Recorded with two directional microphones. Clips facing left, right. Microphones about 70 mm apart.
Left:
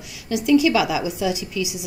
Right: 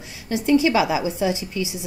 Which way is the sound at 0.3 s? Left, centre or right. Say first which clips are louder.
Left 1 dB; right.